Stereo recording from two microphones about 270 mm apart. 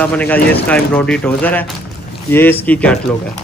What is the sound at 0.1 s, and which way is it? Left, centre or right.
Speech, centre.